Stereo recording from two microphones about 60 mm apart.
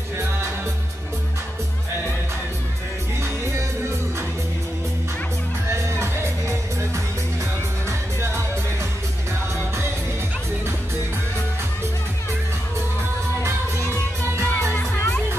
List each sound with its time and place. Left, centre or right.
5.7 s music: right
14.5 s music: left